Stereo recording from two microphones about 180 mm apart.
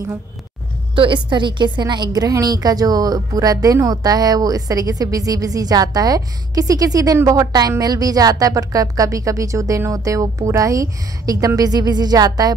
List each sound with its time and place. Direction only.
0.9 s a woman's voice: 25° right (ahead or behind)